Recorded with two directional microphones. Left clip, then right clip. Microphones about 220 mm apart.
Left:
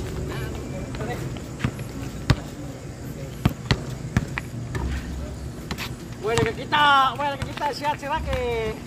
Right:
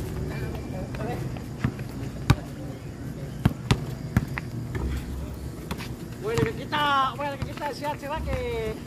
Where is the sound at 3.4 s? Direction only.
5° right (ahead or behind).